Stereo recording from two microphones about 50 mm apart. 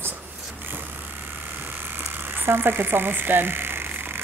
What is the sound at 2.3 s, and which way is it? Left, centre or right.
Speech, right.